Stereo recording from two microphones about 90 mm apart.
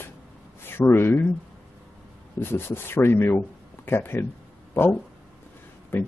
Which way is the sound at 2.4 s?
25° left (ahead or behind).